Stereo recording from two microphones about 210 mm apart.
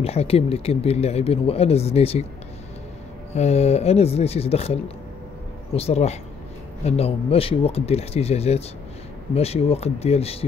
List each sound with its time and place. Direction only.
0.0 s speech: 30° left (ahead or behind)
3.3 s speech: 30° left (ahead or behind)